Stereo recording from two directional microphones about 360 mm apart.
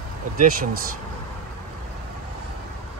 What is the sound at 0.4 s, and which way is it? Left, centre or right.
Speech, right.